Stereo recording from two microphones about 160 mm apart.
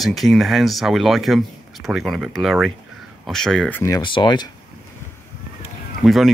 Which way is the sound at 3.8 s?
25° left (ahead or behind).